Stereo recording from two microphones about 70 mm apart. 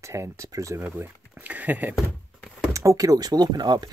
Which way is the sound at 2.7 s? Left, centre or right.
Right.